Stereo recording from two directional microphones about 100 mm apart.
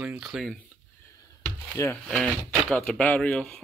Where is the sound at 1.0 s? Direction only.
35° left (ahead or behind).